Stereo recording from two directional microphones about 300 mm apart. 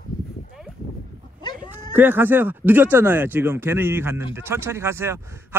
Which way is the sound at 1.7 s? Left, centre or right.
Centre.